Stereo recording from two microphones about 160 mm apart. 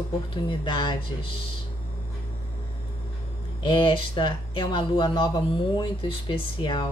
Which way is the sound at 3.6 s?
30° left (ahead or behind).